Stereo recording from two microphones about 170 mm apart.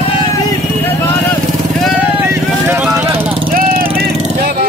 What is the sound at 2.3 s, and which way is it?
Vehicle, 15° right (ahead or behind).